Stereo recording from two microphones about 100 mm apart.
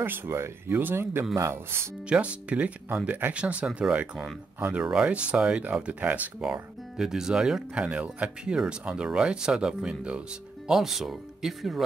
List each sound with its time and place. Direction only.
0.0 s speech: 25° right (ahead or behind)
2.0 s speech: 10° right (ahead or behind)
6.4 s speech: 5° right (ahead or behind)